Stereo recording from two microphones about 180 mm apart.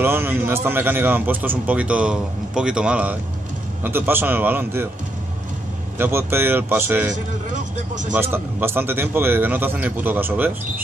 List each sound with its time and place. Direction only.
0.0 s a man's voice: 10° right (ahead or behind)
5.9 s a man's voice: 15° right (ahead or behind)
7.5 s music: 45° right (ahead or behind)
8.1 s a man's voice: 10° right (ahead or behind)